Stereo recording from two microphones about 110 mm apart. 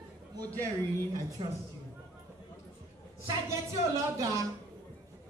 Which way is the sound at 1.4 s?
55° right (ahead or behind).